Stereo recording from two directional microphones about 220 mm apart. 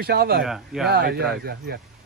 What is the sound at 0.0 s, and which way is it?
Speech, 45° right (ahead or behind).